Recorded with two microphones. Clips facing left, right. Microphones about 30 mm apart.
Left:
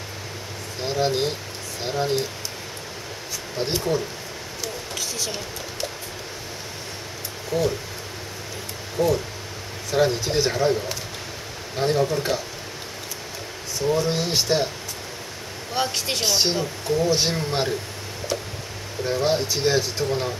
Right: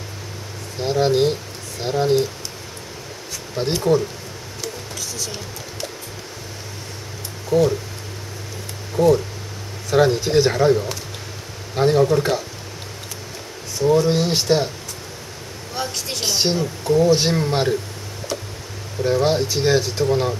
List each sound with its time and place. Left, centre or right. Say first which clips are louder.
0.8 s speech: right 6 dB; centre
3.5 s speech: right 3 dB; centre
7.5 s speech: right 7 dB; centre
9.0 s speech: right 6 dB; centre
9.8 s speech: right 4 dB; centre
13.8 s speech: right 6 dB; centre
15.7 s speech: left 2 dB; centre
16.2 s speech: right 2 dB; centre
19.0 s speech: right 4 dB; centre